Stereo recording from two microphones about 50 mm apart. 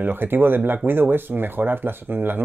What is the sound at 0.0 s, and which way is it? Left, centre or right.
Speech, right.